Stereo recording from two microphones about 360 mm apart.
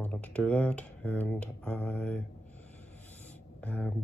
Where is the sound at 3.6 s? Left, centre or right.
Centre.